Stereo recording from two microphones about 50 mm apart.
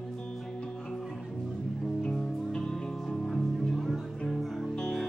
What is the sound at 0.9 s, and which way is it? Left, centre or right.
Music, centre.